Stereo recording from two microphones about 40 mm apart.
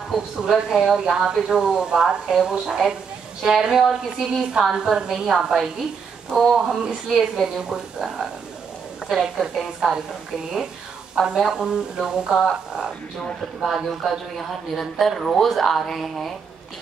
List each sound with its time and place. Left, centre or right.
0.1 s speech: centre
7.1 s speech: centre
7.4 s speech: centre
11.1 s speech: centre
13.8 s speech: centre